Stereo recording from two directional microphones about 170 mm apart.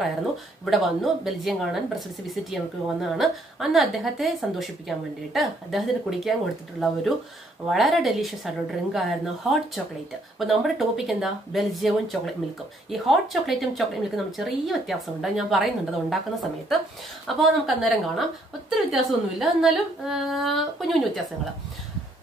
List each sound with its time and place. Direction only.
0.7 s a woman's voice: centre (ahead or behind)
17.4 s a woman's voice: centre (ahead or behind)